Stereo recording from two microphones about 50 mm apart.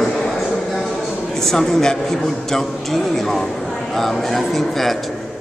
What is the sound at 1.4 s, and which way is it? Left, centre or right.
A man's voice, centre.